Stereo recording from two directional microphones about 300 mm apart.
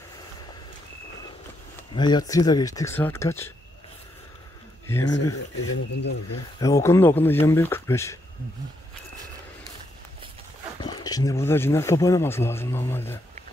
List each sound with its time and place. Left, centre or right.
1.8 s speech: centre
5.0 s speech: left
6.6 s speech: centre
10.8 s speech: centre